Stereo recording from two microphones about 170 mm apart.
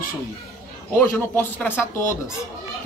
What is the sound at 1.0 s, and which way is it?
Speech, 10° left (ahead or behind).